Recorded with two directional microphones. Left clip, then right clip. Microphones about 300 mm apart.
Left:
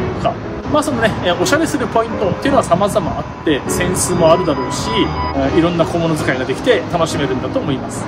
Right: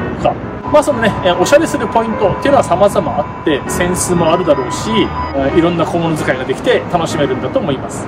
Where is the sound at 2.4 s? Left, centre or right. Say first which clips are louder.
Right 3 dB; centre.